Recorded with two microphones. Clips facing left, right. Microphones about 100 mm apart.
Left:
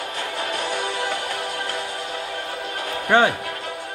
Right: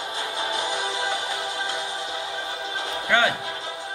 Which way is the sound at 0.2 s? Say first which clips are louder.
Left 1 dB; 20° right (ahead or behind).